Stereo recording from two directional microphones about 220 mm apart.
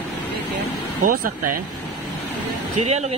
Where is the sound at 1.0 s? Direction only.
40° right (ahead or behind).